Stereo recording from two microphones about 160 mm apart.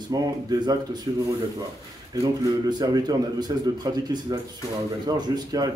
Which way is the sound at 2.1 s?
25° right (ahead or behind).